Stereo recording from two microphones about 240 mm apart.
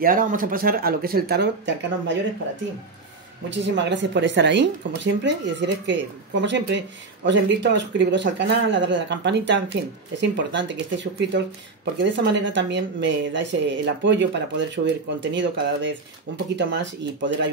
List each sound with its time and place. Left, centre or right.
0.0 s speech: right
3.4 s speech: right